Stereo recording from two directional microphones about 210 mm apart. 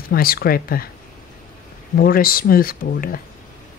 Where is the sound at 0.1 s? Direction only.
45° left (ahead or behind).